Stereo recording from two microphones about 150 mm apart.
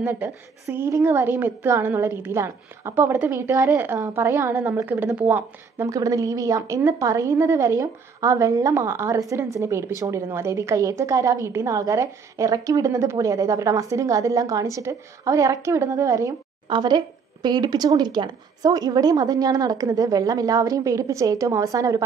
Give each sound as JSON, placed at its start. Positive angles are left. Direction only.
{"t": 0.0, "sound": "a woman's voice", "side_deg": -15}